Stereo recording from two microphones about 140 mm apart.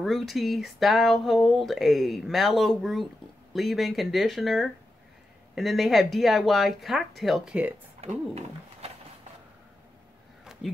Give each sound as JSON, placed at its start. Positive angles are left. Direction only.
{"t": 0.0, "sound": "speech", "side_deg": 0}
{"t": 8.0, "sound": "roaring cats", "side_deg": -50}
{"t": 10.4, "sound": "a sound", "side_deg": -5}